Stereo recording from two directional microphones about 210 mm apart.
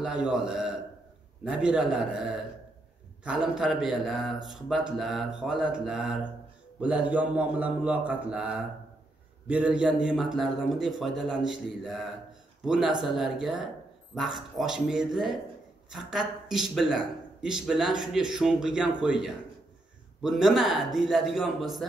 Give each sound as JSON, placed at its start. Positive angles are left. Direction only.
{"t": 0.0, "sound": "a man's voice", "side_deg": -5}